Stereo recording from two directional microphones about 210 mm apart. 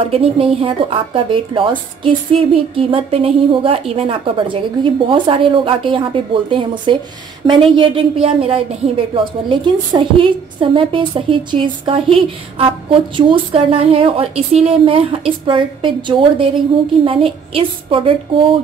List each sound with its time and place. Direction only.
0.0 s a woman's voice: 25° right (ahead or behind)